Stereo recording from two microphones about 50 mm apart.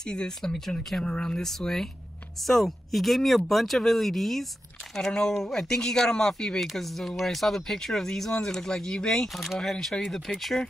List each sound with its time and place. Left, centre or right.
0.0 s speech: centre
6.7 s speech: centre
9.3 s speech: centre